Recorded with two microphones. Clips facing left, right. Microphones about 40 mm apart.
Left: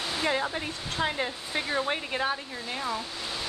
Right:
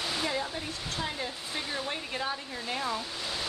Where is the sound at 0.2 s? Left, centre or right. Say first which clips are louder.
Left 4 dB; left.